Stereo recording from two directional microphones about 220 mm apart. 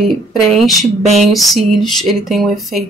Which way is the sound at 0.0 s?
Centre (ahead or behind).